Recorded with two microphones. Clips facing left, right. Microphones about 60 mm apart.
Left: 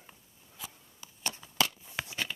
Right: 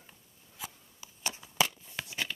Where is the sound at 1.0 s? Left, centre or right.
Centre.